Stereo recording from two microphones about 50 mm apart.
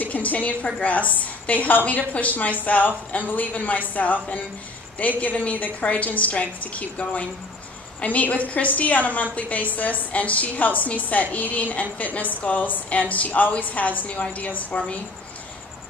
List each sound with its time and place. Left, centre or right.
0.0 s a woman's voice: left